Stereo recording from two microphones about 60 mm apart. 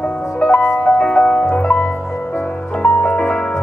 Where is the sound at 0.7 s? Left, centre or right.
Centre.